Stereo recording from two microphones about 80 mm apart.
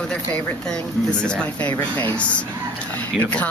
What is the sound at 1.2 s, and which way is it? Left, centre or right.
Speech, centre.